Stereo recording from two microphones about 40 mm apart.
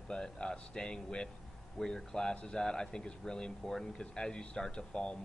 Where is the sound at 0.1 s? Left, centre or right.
Left.